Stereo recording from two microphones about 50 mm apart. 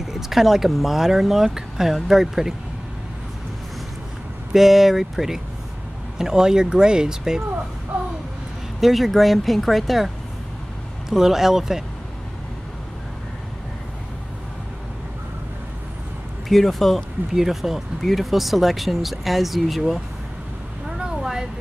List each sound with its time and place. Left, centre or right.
0.0 s speech: centre
4.5 s speech: centre
7.9 s a sound: right
8.8 s speech: centre
16.4 s speech: centre
21.0 s a sound: centre